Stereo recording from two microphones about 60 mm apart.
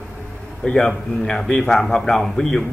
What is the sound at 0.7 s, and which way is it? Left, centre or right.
A man's voice, centre.